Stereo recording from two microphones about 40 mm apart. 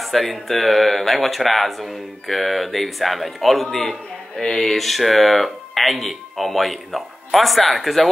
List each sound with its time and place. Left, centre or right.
0.0 s speech: centre
4.4 s speech: centre